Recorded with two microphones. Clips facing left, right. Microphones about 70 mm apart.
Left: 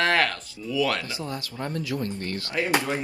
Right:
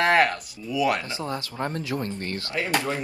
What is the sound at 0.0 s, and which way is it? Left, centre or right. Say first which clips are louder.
Speech: right 3 dB; right.